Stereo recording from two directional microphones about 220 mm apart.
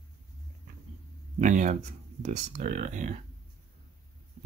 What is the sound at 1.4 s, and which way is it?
Speech, 35° right (ahead or behind).